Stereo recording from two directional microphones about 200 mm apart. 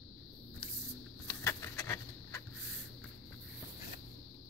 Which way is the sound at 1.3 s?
15° left (ahead or behind).